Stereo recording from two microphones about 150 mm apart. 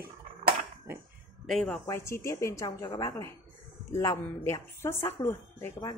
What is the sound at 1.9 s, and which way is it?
A woman's voice, 20° left (ahead or behind).